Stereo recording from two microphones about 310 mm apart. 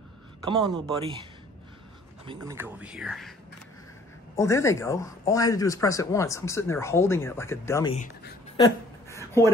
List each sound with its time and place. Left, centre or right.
0.5 s speech: centre
2.2 s speech: centre
4.4 s a man's voice: centre
7.9 s speech: left
8.5 s a sound: centre